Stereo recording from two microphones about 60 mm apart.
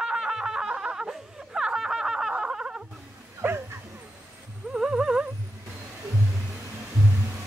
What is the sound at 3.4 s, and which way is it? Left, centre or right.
Bow-wow, right.